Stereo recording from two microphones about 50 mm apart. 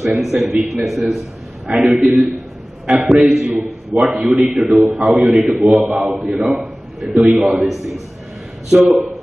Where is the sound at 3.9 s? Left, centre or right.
Centre.